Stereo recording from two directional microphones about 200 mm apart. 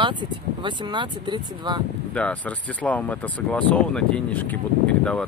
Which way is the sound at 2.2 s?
5° left (ahead or behind).